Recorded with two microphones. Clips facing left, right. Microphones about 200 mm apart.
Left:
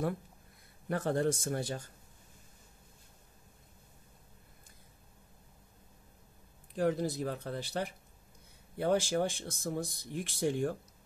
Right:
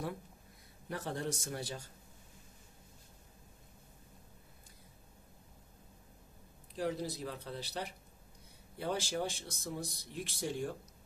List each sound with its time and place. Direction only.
0.8 s speech: 55° left (ahead or behind)
6.8 s speech: 50° left (ahead or behind)